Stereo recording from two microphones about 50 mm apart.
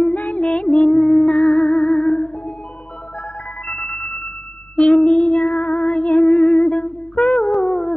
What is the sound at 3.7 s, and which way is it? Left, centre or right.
Music, left.